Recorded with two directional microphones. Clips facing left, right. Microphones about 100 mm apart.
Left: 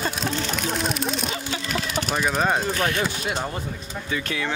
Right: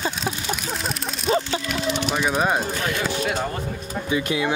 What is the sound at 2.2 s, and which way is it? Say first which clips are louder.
Speech: left 1 dB; centre (ahead or behind).